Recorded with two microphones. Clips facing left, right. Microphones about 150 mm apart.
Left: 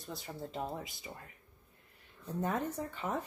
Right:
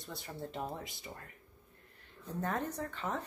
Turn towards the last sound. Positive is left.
turn(degrees=10)  # may be behind; listen again after turning